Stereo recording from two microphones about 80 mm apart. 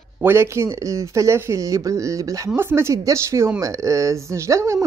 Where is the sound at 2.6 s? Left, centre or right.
Right.